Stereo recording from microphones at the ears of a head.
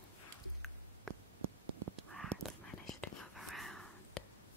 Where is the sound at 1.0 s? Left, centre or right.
Right.